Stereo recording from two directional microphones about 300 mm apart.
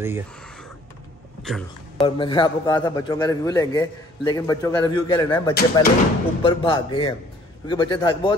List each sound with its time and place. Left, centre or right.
0.0 s speech: centre
2.0 s a man's voice: centre
5.5 s speech: left
6.4 s a man's voice: centre